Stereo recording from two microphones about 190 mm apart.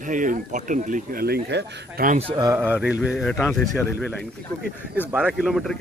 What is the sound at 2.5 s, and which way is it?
Mantra, 10° right (ahead or behind).